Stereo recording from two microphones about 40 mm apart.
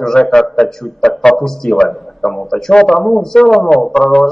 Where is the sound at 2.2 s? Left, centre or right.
Centre.